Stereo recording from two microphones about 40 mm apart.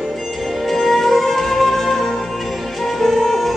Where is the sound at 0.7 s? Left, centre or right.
Centre.